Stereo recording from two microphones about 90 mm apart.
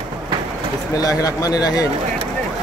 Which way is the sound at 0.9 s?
40° left (ahead or behind).